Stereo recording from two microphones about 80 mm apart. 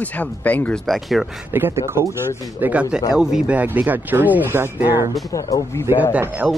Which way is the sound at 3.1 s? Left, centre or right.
Centre.